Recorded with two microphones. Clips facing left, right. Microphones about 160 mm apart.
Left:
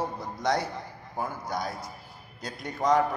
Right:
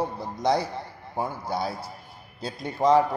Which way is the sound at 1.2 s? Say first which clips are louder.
Right 3 dB; 30° right (ahead or behind).